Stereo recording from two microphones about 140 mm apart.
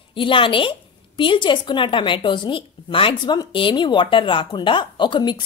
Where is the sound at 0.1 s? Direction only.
35° left (ahead or behind).